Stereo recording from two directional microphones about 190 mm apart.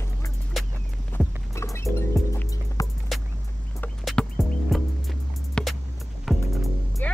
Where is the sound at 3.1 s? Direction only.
Centre (ahead or behind).